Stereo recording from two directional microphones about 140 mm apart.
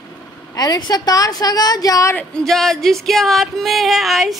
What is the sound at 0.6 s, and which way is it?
A woman's voice, 30° left (ahead or behind).